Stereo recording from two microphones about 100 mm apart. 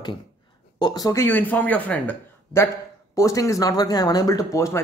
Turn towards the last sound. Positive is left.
turn(degrees=30)  # may be behind; listen again after turning